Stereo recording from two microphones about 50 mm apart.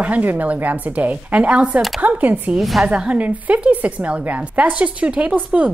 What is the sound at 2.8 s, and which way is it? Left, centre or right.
A woman's voice, right.